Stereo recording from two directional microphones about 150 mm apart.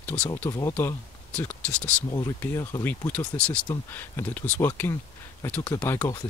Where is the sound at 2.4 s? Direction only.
20° left (ahead or behind).